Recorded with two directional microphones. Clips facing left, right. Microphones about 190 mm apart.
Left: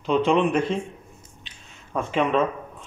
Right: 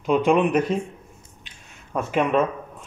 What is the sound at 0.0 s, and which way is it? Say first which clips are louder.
Speech: right 1 dB; 10° right (ahead or behind).